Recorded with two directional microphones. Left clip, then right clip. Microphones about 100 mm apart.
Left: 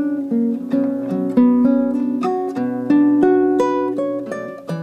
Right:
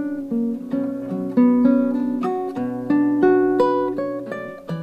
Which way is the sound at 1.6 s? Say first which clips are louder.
Left 1 dB; 45° left (ahead or behind).